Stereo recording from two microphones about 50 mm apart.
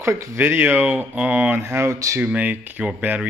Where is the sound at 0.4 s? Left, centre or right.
Right.